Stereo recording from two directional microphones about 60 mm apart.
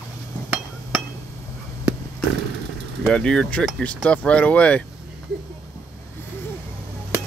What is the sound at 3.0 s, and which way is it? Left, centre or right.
Speech, centre.